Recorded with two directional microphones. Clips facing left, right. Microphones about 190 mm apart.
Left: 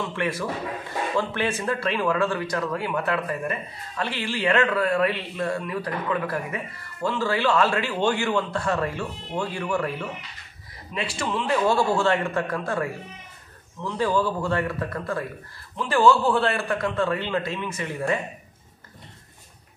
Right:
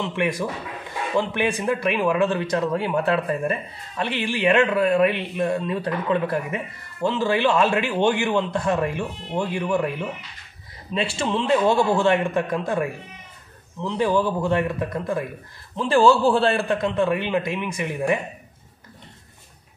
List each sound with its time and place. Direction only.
0.0 s a man's voice: 15° right (ahead or behind)
15.7 s a man's voice: 30° right (ahead or behind)